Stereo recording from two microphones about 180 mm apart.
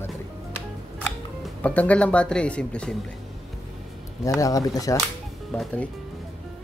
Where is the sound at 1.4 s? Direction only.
10° left (ahead or behind).